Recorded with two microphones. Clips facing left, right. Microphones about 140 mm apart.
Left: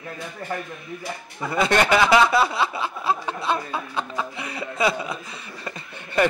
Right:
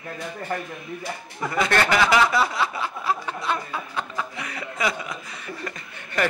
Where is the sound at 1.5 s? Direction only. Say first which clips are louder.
Left 2 dB; 20° left (ahead or behind).